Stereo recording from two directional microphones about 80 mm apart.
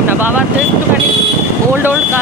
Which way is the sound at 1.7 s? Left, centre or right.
Right.